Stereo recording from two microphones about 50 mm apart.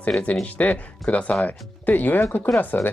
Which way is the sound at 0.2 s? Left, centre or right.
Left.